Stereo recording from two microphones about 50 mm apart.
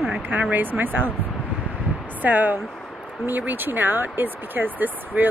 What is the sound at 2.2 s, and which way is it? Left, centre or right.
A woman's voice, right.